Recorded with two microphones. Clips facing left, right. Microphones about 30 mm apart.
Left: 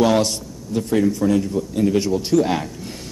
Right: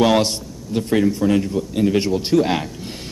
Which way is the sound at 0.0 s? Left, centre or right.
Right.